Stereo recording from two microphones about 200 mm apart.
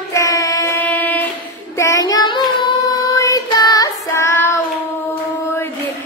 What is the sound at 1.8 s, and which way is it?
Child singing, 15° left (ahead or behind).